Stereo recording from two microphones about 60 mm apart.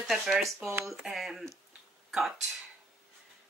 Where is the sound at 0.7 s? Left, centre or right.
Right.